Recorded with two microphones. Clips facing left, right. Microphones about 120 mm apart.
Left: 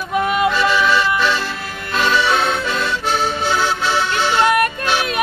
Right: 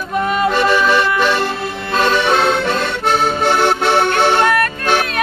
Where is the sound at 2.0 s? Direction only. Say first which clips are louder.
Right 2 dB; 50° right (ahead or behind).